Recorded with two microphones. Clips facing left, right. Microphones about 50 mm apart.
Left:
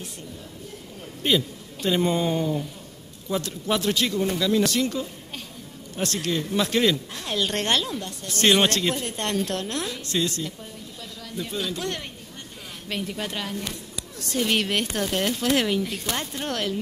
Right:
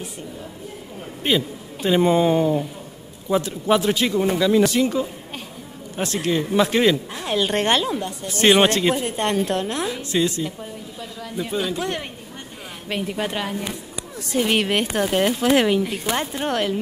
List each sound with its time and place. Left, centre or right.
1.2 s speech: centre